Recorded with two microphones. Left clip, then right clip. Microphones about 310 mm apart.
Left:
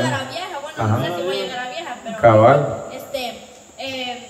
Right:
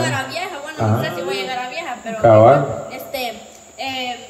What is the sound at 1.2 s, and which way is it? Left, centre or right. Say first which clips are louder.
Music: right 1 dB; right.